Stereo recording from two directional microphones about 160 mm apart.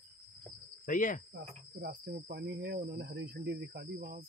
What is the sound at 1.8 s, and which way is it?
Speech, 85° right.